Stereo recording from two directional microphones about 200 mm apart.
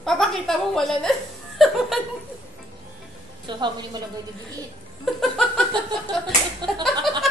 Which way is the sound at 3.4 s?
20° right (ahead or behind).